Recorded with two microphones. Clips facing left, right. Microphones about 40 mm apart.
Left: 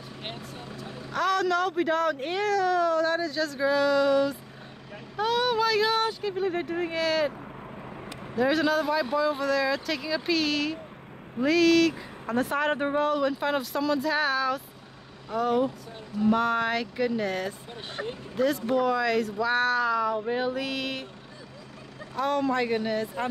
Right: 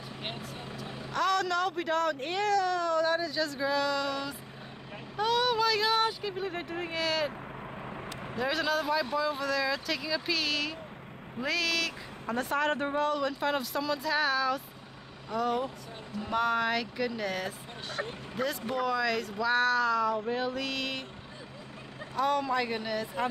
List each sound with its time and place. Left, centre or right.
0.2 s vehicle: centre
1.1 s speech: centre
8.4 s speech: centre
19.3 s a sound: centre
22.1 s speech: centre
22.7 s a sound: centre